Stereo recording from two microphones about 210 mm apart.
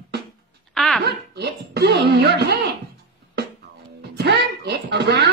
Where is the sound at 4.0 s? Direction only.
50° right (ahead or behind).